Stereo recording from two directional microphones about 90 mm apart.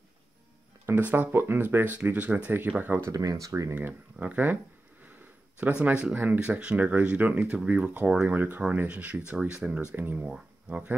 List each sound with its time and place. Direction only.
0.8 s speech: 25° right (ahead or behind)
3.1 s speech: 40° right (ahead or behind)
3.7 s speech: 15° right (ahead or behind)
5.6 s speech: 15° right (ahead or behind)